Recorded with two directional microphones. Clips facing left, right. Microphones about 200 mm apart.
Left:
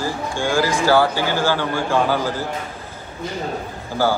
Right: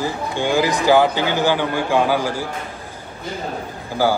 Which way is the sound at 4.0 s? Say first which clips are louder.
Right 1 dB; 15° right (ahead or behind).